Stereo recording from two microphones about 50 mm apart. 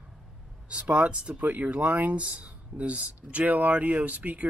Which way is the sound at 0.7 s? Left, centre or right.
Right.